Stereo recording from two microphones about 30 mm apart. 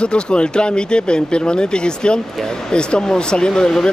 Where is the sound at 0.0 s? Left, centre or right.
Left.